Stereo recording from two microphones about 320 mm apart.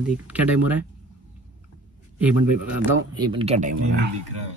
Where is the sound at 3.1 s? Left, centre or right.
Centre.